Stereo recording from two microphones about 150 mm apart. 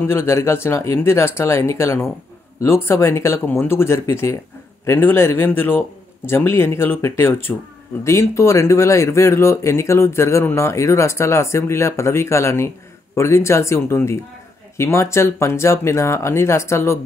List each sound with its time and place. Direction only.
0.0 s speech: 15° left (ahead or behind)